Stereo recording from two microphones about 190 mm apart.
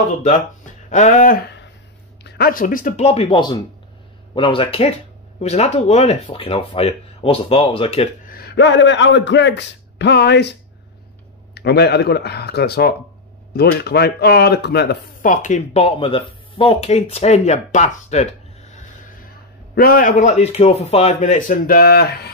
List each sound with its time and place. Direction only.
0.8 s speech: 40° left (ahead or behind)
2.2 s speech: 55° left (ahead or behind); by 8.1 s 30° left (ahead or behind)
8.3 s a man's voice: 55° left (ahead or behind)
11.5 s speech: 60° left (ahead or behind)
15.4 s speech: 35° left (ahead or behind)
18.8 s a man's voice: 50° left (ahead or behind)